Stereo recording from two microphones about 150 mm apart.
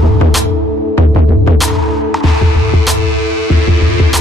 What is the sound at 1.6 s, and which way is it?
Music, centre (ahead or behind).